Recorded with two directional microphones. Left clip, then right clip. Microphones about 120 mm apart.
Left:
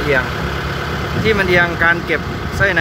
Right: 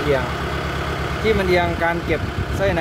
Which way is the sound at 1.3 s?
10° right (ahead or behind).